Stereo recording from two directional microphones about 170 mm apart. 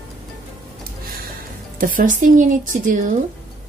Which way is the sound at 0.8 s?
60° right (ahead or behind).